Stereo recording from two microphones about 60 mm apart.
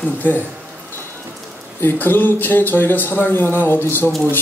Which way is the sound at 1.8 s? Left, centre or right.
Left.